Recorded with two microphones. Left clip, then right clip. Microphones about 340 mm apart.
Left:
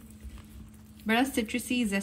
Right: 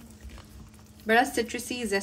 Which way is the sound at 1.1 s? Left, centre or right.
Centre.